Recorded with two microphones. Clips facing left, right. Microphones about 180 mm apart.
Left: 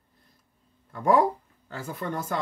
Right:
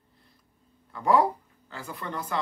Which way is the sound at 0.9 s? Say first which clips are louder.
Left 1 dB; 50° left (ahead or behind).